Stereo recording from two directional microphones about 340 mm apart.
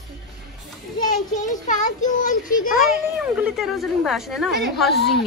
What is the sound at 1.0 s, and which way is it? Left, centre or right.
A child's voice, left.